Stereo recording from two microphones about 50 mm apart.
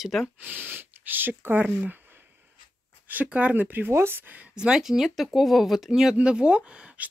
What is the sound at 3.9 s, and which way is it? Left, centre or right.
Speech, right.